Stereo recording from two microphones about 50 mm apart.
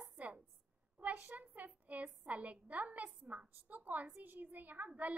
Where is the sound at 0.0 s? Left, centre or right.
Right.